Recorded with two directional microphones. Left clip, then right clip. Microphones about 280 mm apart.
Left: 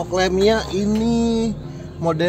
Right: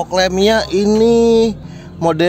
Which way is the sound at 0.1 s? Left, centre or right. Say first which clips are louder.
Right 4 dB; right.